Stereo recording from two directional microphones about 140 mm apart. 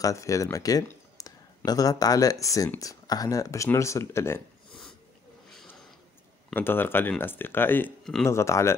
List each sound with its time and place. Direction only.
0.0 s speech: 20° left (ahead or behind)
0.8 s a sound: 25° left (ahead or behind)
2.4 s speech: 25° left (ahead or behind)
6.5 s speech: 15° left (ahead or behind)
8.0 s speech: centre (ahead or behind)
8.3 s speech: 20° left (ahead or behind)